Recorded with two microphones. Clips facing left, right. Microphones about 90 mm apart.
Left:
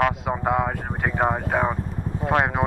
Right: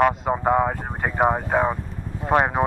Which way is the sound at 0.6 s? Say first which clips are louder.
Right 1 dB; 5° right (ahead or behind).